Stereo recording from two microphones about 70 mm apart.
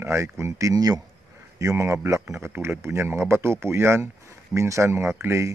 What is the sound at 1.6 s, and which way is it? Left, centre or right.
Speech, right.